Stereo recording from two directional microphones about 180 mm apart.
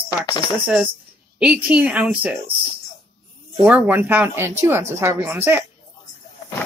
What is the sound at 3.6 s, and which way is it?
Speech, 10° right (ahead or behind).